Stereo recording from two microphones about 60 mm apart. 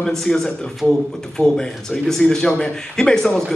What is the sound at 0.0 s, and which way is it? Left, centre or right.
A man's voice, centre.